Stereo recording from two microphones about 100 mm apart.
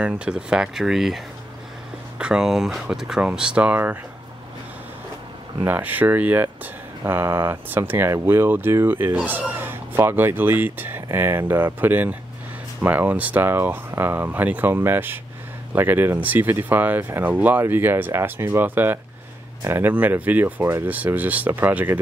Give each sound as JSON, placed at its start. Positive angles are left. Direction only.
{"t": 0.0, "sound": "speech", "side_deg": -10}
{"t": 5.6, "sound": "speech", "side_deg": -15}